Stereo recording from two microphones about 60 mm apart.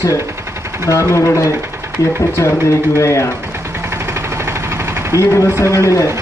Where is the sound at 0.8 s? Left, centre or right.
Left.